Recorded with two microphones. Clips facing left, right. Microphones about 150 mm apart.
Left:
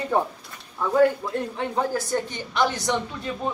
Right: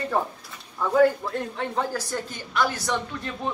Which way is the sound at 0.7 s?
Centre (ahead or behind).